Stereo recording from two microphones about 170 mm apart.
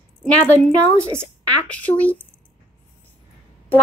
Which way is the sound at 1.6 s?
10° left (ahead or behind).